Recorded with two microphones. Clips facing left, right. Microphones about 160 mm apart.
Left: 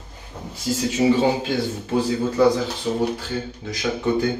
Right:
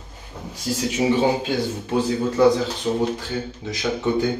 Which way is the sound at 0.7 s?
15° right (ahead or behind).